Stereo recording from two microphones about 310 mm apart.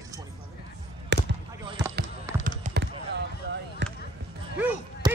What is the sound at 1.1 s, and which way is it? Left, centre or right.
Basketball bounce, right.